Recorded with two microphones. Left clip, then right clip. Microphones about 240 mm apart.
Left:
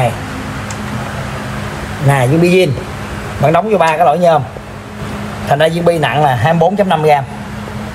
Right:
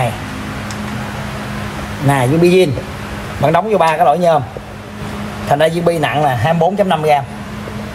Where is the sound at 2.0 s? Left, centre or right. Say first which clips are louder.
Left 1 dB; right.